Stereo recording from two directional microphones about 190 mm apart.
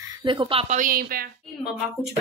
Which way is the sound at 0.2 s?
25° right (ahead or behind).